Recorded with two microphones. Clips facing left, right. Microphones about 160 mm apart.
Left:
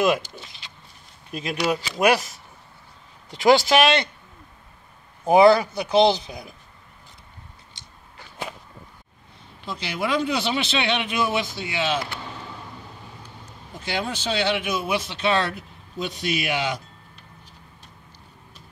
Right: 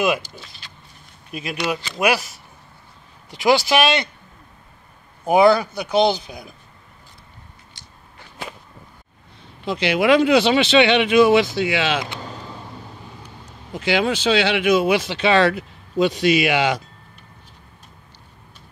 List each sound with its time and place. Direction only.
0.2 s speech: 20° left (ahead or behind)
1.3 s speech: 5° right (ahead or behind)
5.3 s speech: 25° left (ahead or behind)
9.7 s speech: 85° right
13.7 s speech: 85° right